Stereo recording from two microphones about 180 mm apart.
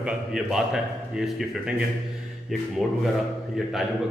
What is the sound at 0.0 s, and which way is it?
Speech, 5° right (ahead or behind).